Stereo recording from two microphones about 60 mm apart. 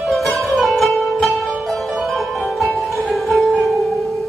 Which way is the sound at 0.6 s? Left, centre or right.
Centre.